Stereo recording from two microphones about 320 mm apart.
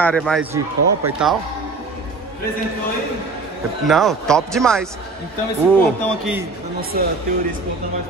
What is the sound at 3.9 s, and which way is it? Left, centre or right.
Speech, centre.